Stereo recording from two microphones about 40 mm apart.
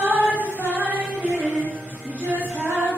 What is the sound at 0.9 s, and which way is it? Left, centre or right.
Child singing, right.